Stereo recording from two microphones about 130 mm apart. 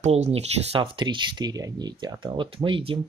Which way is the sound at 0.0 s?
55° right (ahead or behind).